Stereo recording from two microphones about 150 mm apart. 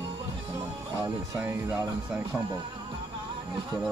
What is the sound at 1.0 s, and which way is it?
Music, 10° right (ahead or behind).